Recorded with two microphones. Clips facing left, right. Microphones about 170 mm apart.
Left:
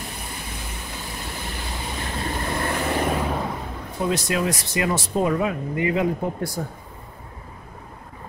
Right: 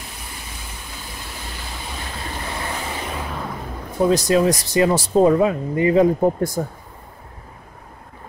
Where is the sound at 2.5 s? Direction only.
55° left (ahead or behind).